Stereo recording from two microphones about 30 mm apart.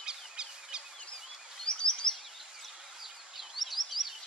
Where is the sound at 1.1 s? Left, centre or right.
Left.